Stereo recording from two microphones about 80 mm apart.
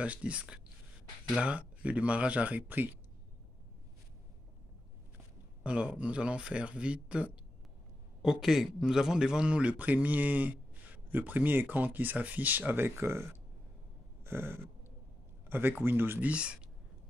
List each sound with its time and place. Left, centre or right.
0.0 s a man's voice: centre
5.6 s a man's voice: centre; by 13.4 s right
14.2 s a sound: right
15.4 s speech: right